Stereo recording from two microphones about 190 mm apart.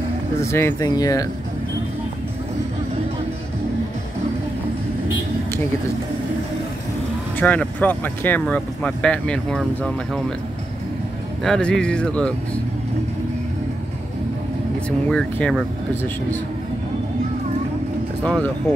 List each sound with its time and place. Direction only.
0.4 s speech: 15° left (ahead or behind)
7.3 s speech: 10° left (ahead or behind)
11.4 s speech: 5° left (ahead or behind)
14.9 s speech: 5° left (ahead or behind)
18.2 s speech: 5° left (ahead or behind)